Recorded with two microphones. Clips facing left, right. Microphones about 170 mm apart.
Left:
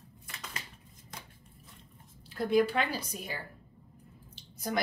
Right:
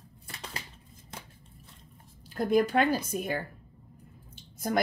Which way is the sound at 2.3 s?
45° right (ahead or behind).